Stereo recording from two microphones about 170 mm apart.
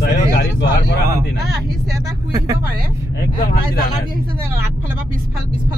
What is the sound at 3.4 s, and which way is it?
Speech, 60° left (ahead or behind).